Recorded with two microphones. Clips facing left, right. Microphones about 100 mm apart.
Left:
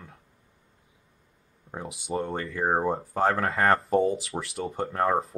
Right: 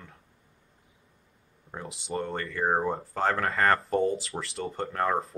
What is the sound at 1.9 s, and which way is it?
Speech, 15° left (ahead or behind).